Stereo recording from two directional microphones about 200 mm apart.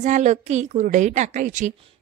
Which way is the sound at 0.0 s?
35° right (ahead or behind).